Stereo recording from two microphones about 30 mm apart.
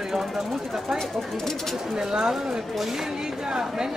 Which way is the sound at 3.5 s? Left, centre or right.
Right.